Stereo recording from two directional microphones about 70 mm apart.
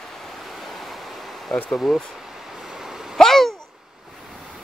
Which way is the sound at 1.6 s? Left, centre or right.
Centre.